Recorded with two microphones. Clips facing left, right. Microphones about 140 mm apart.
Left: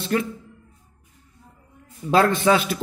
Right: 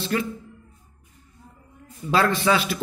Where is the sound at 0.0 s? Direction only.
55° left (ahead or behind).